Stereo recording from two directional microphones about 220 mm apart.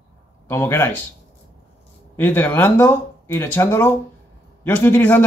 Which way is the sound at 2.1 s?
10° left (ahead or behind).